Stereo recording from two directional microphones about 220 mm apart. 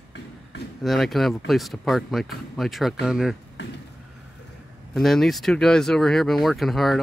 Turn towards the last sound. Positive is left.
turn(degrees=0)  # may be behind; listen again after turning